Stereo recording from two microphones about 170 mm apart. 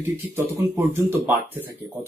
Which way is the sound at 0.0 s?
15° right (ahead or behind).